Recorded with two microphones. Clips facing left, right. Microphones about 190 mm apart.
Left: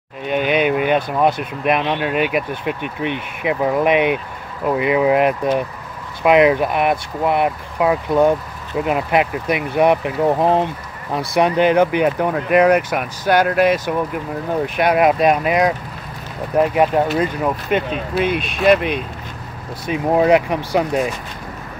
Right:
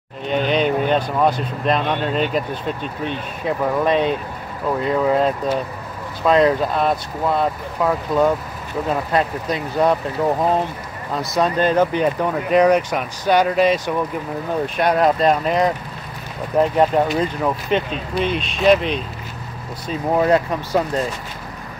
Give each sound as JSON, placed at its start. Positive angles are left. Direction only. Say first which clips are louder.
{"t": 0.3, "sound": "speech", "louder": "left 1 dB", "side_deg": 10}